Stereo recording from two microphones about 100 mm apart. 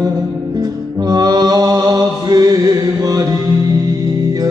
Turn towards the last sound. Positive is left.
turn(degrees=-40)  # may be behind; listen again after turning